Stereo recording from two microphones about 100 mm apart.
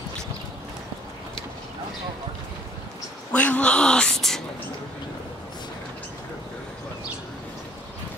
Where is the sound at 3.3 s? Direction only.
15° left (ahead or behind).